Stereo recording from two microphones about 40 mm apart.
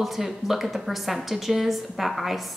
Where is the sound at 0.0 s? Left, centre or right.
Centre.